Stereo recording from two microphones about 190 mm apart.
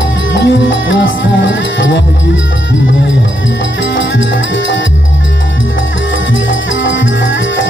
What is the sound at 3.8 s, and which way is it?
Music, 70° left (ahead or behind).